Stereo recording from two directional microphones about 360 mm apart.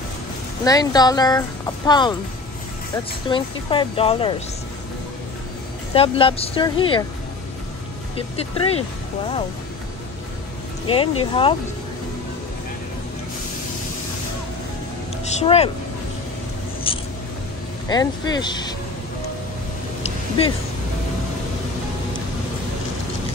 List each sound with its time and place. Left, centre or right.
0.7 s speech: centre
3.3 s speech: centre
5.9 s speech: centre
8.4 s speech: centre
10.9 s speech: centre
15.2 s speech: centre
16.9 s a sound: centre
17.8 s speech: centre
20.0 s a sound: centre